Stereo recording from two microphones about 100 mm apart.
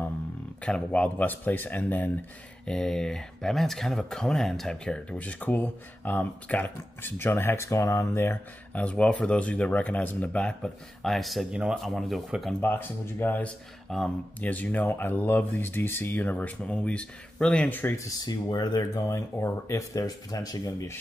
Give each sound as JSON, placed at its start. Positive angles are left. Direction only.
{"t": 0.7, "sound": "speech", "side_deg": 10}
{"t": 2.6, "sound": "speech", "side_deg": 5}
{"t": 8.7, "sound": "speech", "side_deg": 10}
{"t": 12.5, "sound": "speech", "side_deg": 20}
{"t": 13.8, "sound": "speech", "side_deg": 5}
{"t": 14.4, "sound": "speech", "side_deg": 15}
{"t": 17.9, "sound": "speech", "side_deg": 35}
{"t": 19.0, "sound": "speech", "side_deg": 30}